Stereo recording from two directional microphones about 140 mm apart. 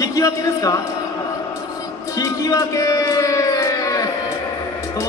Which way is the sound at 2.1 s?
25° left (ahead or behind).